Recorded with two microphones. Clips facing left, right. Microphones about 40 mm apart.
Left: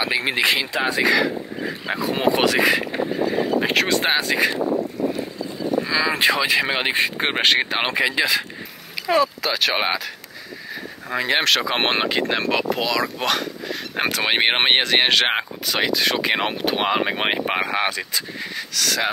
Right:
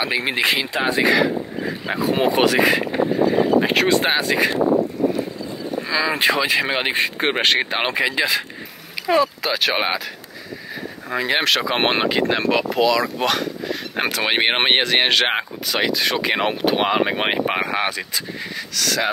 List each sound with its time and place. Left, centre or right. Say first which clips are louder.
0.0 s speech: even; centre
5.9 s speech: right 2 dB; centre
9.8 s speech: right 1 dB; centre
11.1 s speech: even; centre